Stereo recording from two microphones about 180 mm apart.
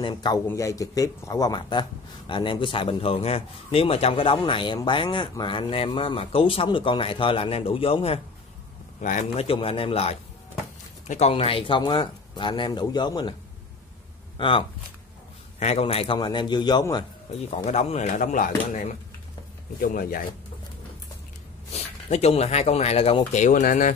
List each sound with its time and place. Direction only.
0.0 s speech: 25° left (ahead or behind)
14.3 s speech: 30° left (ahead or behind)
17.6 s speech: 40° left (ahead or behind)
21.7 s speech: 35° left (ahead or behind)